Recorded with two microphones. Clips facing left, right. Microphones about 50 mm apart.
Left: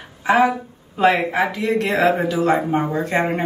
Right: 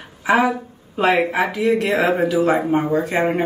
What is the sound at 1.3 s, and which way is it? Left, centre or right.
Speech, centre.